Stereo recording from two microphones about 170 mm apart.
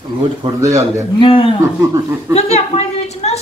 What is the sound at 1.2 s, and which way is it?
Speech, 30° left (ahead or behind).